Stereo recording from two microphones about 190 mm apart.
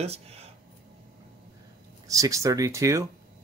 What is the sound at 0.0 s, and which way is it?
Speech, 35° right (ahead or behind).